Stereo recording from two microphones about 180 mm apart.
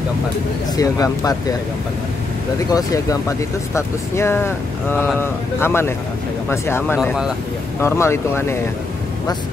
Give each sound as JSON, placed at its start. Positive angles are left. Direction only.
{"t": 0.7, "sound": "speech", "side_deg": 20}
{"t": 2.7, "sound": "speech", "side_deg": 20}